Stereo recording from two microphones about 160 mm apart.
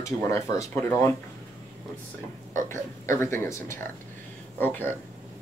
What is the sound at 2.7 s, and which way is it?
Speech, 15° left (ahead or behind).